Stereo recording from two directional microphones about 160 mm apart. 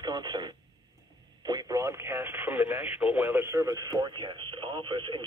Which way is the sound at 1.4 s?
25° right (ahead or behind).